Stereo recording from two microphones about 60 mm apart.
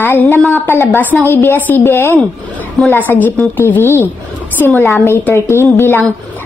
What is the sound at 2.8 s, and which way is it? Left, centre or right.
Speech, left.